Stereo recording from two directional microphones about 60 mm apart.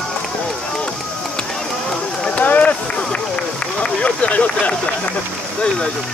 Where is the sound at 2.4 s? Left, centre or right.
Left.